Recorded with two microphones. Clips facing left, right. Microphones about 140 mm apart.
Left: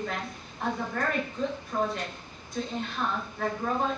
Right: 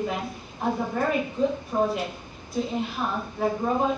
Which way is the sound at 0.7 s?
20° right (ahead or behind).